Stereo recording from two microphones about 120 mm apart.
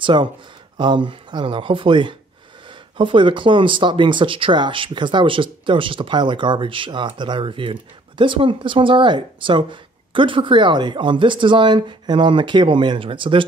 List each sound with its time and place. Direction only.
0.0 s speech: 40° right (ahead or behind)